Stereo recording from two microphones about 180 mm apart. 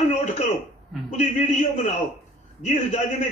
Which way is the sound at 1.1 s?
40° left (ahead or behind).